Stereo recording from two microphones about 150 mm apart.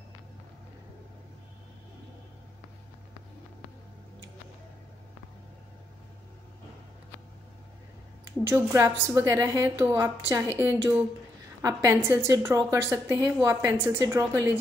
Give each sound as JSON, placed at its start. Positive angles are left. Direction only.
{"t": 8.5, "sound": "a woman's voice", "side_deg": -20}